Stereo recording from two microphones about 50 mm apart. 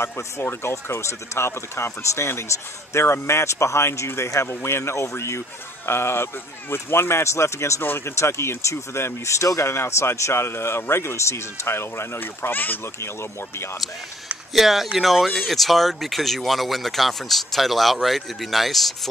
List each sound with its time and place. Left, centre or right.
0.0 s speech: left
5.9 s speech: left
12.2 s speech: left
13.0 s speech: left
14.5 s speech: centre